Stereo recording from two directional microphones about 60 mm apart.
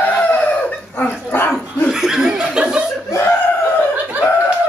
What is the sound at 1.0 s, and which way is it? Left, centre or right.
Dog, left.